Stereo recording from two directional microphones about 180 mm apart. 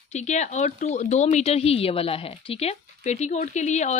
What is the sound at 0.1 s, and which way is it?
Speech, 40° left (ahead or behind).